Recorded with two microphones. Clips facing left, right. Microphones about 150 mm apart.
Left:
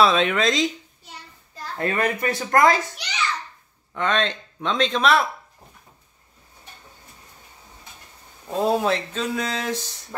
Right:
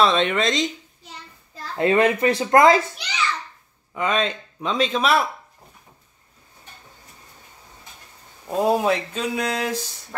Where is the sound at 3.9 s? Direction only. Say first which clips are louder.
Even; 5° right (ahead or behind).